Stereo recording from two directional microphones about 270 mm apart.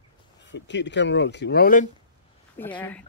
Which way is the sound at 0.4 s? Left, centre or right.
Left.